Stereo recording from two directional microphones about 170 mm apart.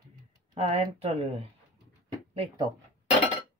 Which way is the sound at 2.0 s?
30° right (ahead or behind).